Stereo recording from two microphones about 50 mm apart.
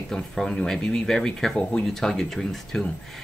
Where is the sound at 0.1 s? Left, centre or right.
Centre.